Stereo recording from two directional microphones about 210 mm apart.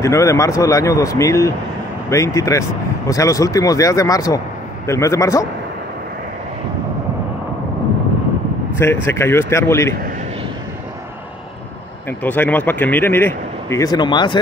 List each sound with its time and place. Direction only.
0.0 s a man's voice: 15° left (ahead or behind)
8.7 s a man's voice: 10° left (ahead or behind)
12.1 s a man's voice: 10° left (ahead or behind)